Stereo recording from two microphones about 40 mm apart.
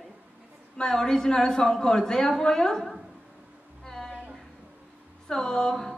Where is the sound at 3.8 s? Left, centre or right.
Centre.